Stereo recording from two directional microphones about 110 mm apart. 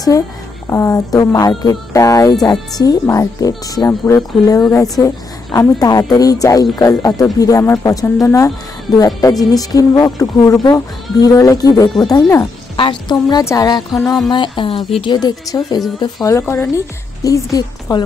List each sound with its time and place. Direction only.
0.1 s a woman's voice: 30° left (ahead or behind)
14.3 s speech: 50° left (ahead or behind)
15.1 s a woman's voice: 35° left (ahead or behind)
16.3 s a woman's voice: 25° left (ahead or behind)